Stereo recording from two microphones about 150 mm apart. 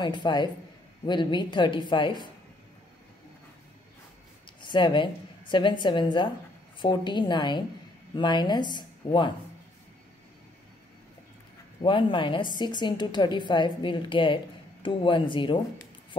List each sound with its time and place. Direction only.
0.0 s a woman's voice: 30° left (ahead or behind)
4.6 s a woman's voice: 30° left (ahead or behind)
11.8 s a woman's voice: 35° left (ahead or behind)